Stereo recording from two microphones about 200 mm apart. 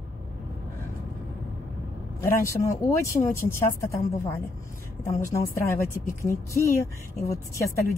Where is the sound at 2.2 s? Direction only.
15° left (ahead or behind).